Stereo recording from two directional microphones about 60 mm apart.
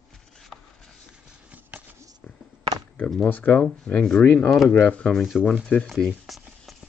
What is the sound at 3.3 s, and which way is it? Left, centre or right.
Speech, left.